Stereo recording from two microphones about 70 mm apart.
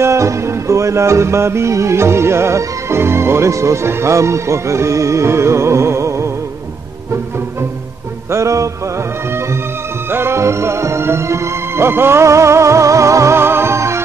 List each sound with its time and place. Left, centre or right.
0.0 s music: right
8.3 s music: right
10.1 s music: right